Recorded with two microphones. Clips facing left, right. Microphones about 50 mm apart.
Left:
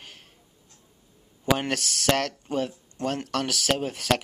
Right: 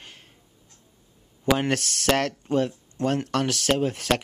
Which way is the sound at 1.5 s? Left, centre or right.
Centre.